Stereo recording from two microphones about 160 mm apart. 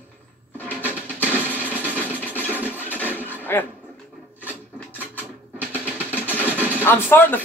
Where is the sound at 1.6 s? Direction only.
10° right (ahead or behind).